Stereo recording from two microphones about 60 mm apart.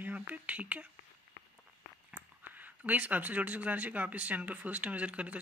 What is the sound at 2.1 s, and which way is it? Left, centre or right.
Speech, right.